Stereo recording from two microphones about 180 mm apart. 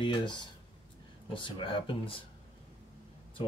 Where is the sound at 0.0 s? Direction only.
25° left (ahead or behind).